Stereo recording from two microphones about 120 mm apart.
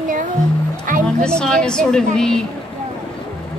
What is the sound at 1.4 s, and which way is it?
A woman's voice, 5° left (ahead or behind).